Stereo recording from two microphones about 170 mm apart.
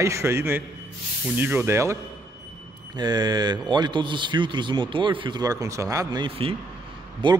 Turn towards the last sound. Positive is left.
turn(degrees=-30)  # may be behind; listen again after turning